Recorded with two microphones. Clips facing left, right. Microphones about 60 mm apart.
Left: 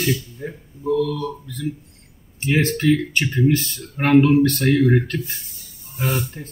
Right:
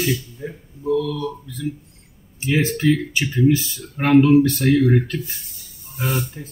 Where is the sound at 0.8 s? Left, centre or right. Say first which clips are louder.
Even; left.